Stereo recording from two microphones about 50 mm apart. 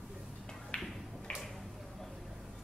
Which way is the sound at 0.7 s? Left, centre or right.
Left.